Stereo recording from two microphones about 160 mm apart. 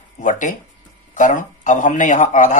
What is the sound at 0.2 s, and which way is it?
Speech, 50° left (ahead or behind).